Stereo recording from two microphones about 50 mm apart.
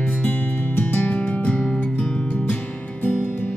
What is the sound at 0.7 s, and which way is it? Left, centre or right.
Music, left.